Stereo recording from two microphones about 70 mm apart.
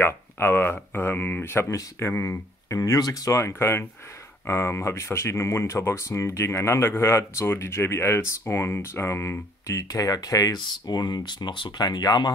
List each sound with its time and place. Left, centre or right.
0.0 s speech: left
1.7 s speech: left